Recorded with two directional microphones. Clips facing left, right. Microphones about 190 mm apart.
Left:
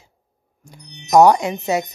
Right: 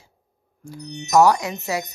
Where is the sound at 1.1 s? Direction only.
25° left (ahead or behind).